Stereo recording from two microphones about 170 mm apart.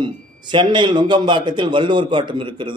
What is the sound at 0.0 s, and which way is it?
A man's voice, 25° right (ahead or behind).